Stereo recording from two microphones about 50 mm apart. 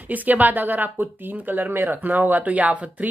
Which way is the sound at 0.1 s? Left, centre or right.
Right.